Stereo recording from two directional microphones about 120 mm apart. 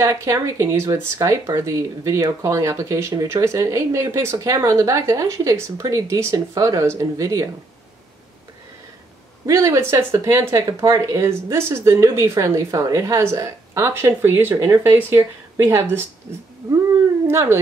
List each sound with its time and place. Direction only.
0.0 s speech: 25° right (ahead or behind)
9.5 s speech: 25° right (ahead or behind)
17.3 s speech: 20° right (ahead or behind)